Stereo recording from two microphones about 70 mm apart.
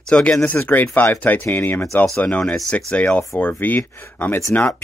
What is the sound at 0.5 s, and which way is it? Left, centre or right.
Speech, left.